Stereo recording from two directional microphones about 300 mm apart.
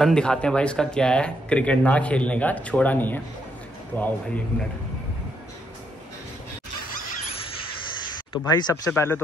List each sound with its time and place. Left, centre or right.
0.0 s speech: centre
6.9 s squeal: left
8.3 s speech: centre